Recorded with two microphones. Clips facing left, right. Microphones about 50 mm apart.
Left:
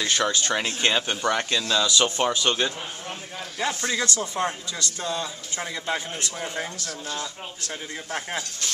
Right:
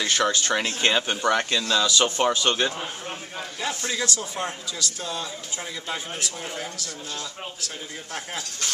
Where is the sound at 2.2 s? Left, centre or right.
Centre.